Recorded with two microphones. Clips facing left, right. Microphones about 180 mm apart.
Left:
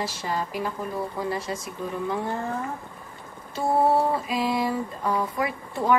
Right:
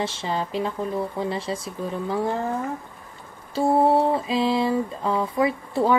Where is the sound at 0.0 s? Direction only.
25° right (ahead or behind).